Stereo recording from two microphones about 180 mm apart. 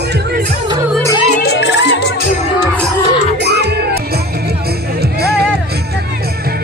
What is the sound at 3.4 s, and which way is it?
Music, 65° right (ahead or behind).